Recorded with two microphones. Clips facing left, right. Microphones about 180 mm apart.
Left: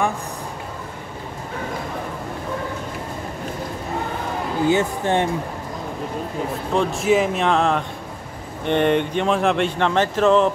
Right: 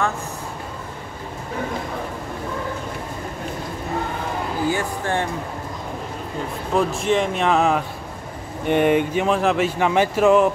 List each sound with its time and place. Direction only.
4.6 s speech: 20° left (ahead or behind)
6.7 s speech: 5° right (ahead or behind)